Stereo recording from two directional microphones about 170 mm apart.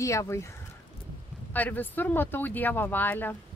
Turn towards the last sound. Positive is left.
turn(degrees=10)  # may be behind; listen again after turning